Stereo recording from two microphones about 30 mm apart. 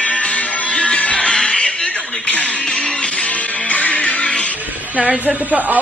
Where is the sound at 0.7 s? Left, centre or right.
Left.